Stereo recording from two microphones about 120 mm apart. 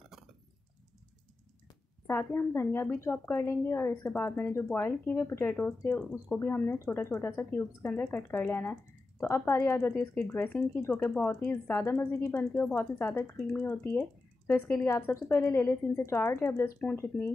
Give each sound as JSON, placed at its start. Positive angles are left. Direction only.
{"t": 2.0, "sound": "a woman's voice", "side_deg": 20}
{"t": 14.9, "sound": "a woman's voice", "side_deg": 20}